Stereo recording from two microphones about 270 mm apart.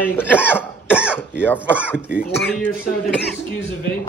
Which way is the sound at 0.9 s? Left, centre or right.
Centre.